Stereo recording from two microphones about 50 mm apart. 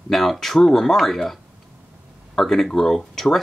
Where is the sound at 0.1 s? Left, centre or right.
Centre.